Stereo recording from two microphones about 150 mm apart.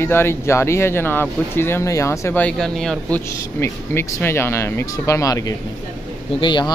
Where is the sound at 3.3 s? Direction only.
15° left (ahead or behind).